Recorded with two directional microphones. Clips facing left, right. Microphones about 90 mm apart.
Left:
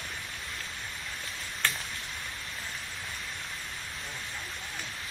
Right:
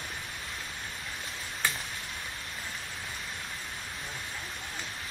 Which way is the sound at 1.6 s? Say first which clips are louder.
Even; 10° right (ahead or behind).